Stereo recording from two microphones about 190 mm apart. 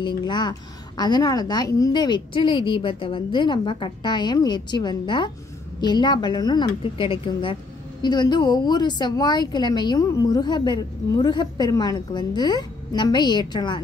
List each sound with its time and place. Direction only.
0.2 s speech: 20° left (ahead or behind)